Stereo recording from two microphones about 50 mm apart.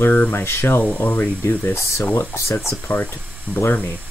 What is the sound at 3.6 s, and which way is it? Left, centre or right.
Speech, left.